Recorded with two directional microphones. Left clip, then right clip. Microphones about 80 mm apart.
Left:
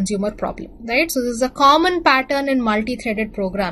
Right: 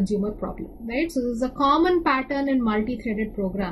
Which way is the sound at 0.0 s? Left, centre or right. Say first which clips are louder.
Left 5 dB; left.